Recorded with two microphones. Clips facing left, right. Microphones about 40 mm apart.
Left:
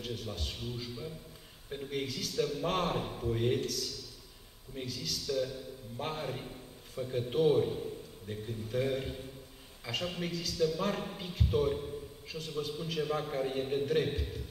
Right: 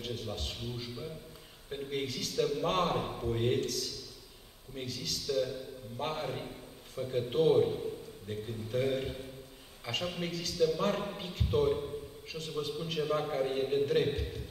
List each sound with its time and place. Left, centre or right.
0.0 s a man's voice: centre